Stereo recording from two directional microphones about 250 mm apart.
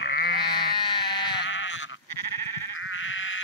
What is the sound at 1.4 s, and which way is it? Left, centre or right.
Sheep, left.